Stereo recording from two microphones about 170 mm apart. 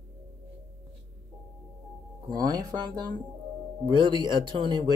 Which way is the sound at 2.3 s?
20° right (ahead or behind).